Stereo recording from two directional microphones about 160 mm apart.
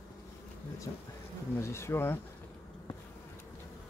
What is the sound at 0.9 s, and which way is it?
Speech, 20° left (ahead or behind).